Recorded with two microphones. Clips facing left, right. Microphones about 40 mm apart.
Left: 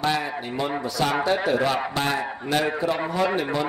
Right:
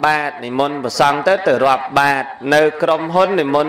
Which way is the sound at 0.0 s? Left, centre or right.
Right.